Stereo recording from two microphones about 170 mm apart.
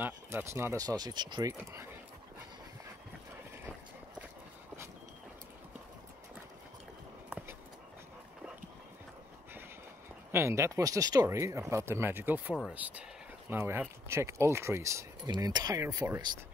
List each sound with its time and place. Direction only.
0.0 s speech: 15° right (ahead or behind)
7.2 s dog: 5° right (ahead or behind)
10.3 s speech: 15° right (ahead or behind)